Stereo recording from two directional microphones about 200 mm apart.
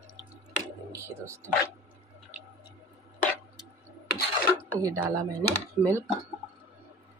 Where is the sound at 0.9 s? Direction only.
15° right (ahead or behind).